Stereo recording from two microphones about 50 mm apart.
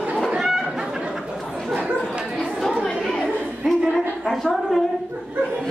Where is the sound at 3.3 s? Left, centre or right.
Right.